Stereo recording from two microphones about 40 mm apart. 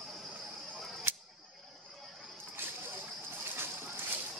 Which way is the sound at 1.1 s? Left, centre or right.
Right.